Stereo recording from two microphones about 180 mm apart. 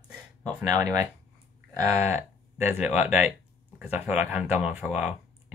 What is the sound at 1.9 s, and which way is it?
Speech, 15° right (ahead or behind).